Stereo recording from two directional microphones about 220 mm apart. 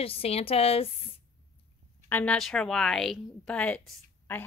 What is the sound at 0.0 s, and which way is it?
Speech, 25° left (ahead or behind).